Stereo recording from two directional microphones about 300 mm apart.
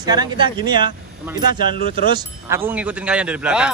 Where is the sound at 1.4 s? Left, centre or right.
Left.